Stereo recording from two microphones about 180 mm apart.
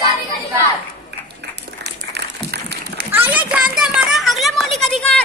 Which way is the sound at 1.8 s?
65° right (ahead or behind).